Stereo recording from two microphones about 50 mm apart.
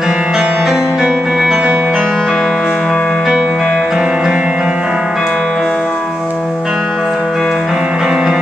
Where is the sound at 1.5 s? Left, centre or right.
Right.